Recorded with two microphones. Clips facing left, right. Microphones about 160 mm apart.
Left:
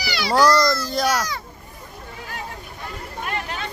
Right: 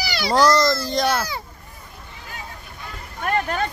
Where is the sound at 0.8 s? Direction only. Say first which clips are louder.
Right 1 dB; 5° left (ahead or behind).